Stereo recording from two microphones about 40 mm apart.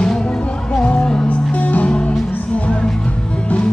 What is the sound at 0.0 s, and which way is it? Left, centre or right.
Music, centre.